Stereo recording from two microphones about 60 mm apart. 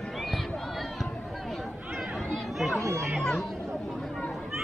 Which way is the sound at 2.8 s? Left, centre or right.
Right.